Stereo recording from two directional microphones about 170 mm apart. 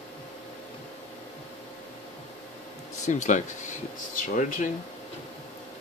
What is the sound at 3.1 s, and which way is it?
Speech, 45° left (ahead or behind).